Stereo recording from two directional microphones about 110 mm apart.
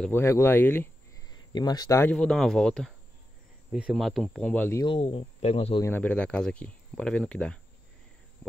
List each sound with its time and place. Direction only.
0.1 s speech: 25° left (ahead or behind)
1.1 s a sound: 40° left (ahead or behind)
2.1 s speech: 5° left (ahead or behind)
3.9 s speech: centre (ahead or behind)
4.8 s speech: 60° left (ahead or behind)
5.9 s speech: 15° left (ahead or behind)